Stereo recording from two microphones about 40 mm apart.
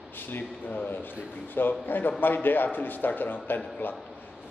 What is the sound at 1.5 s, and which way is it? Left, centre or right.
A man's voice, left.